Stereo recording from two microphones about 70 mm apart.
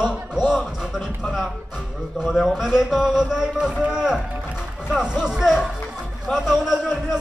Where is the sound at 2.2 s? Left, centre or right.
Centre.